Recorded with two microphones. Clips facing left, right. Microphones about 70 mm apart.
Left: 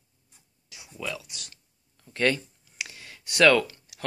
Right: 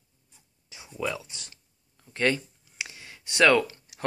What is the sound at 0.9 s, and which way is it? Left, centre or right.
Speech, right.